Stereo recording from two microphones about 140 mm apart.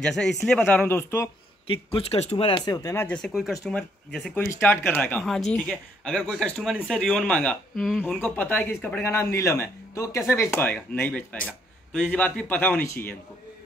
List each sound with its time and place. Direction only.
0.0 s speech: 5° left (ahead or behind)
1.7 s speech: 40° left (ahead or behind); by 3.1 s 25° left (ahead or behind)
3.1 s speech: 5° left (ahead or behind)
4.4 s speech: 20° left (ahead or behind)
5.2 s speech: centre (ahead or behind)